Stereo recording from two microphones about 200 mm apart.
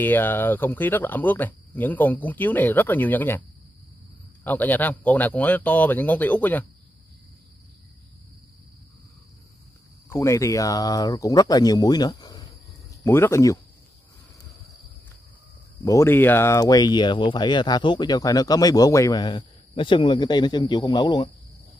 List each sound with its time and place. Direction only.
0.0 s speech: 10° left (ahead or behind)
4.5 s speech: 10° left (ahead or behind)
10.1 s speech: 15° left (ahead or behind)
15.8 s speech: 15° left (ahead or behind)